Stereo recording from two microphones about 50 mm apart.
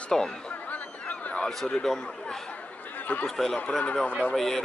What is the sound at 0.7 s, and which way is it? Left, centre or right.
Honk, left.